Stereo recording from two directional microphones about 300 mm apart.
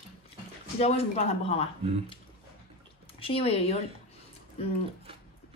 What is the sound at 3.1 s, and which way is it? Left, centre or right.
Speech, centre.